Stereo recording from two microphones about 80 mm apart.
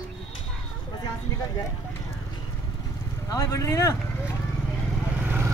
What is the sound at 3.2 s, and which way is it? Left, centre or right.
Speech, left.